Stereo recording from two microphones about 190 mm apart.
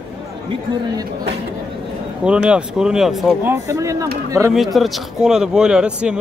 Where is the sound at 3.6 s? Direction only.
15° right (ahead or behind).